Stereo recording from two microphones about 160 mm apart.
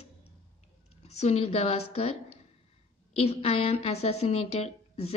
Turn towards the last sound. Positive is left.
turn(degrees=40)  # may be behind; listen again after turning